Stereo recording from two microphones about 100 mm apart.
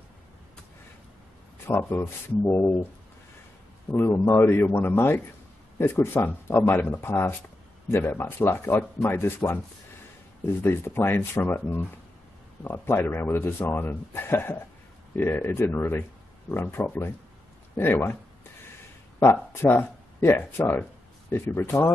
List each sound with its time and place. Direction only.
1.7 s a man's voice: 20° left (ahead or behind)
3.9 s a man's voice: 25° left (ahead or behind)
10.6 s a man's voice: 25° left (ahead or behind)
19.5 s a man's voice: 20° left (ahead or behind)